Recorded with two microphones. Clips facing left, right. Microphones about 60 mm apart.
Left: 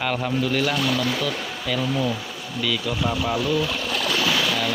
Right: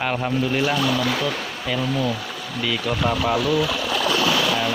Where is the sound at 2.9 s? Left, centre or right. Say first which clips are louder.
Right 6 dB; right.